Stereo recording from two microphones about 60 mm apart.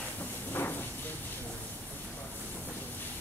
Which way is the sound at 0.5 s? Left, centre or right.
Left.